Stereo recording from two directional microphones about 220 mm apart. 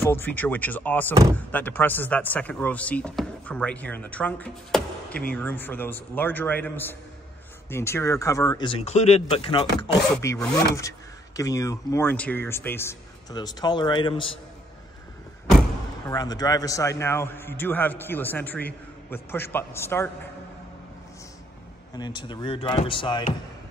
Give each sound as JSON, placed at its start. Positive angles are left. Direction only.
{"t": 0.0, "sound": "speech", "side_deg": 10}
{"t": 10.1, "sound": "speech", "side_deg": 15}
{"t": 16.1, "sound": "speech", "side_deg": 15}
{"t": 21.9, "sound": "speech", "side_deg": 20}